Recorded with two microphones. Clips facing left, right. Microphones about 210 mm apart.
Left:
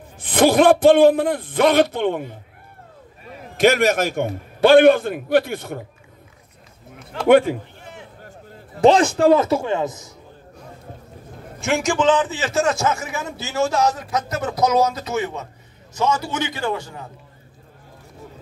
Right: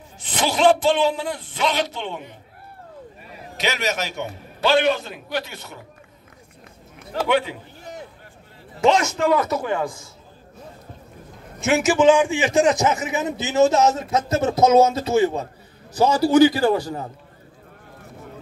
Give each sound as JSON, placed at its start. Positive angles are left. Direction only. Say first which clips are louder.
{"t": 0.2, "sound": "a man's voice", "louder": "left 5 dB", "side_deg": 55}
{"t": 3.5, "sound": "a man's voice", "louder": "left 9 dB", "side_deg": 50}
{"t": 7.2, "sound": "a man's voice", "louder": "left 9 dB", "side_deg": 50}
{"t": 7.8, "sound": "a sound", "louder": "right 3 dB", "side_deg": -40}
{"t": 8.8, "sound": "a man's voice", "louder": "left 5 dB", "side_deg": 30}
{"t": 11.6, "sound": "a man's voice", "louder": "right 3 dB", "side_deg": -5}